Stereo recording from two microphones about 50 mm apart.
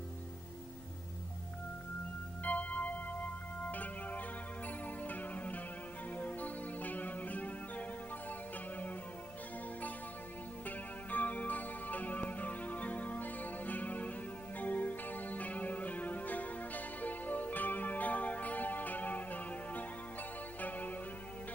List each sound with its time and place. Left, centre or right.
2.4 s music: left
11.1 s music: left